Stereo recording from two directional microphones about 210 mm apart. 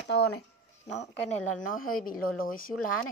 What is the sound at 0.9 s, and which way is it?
Speech, 35° left (ahead or behind).